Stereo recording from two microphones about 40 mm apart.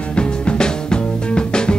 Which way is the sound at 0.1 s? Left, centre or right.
Left.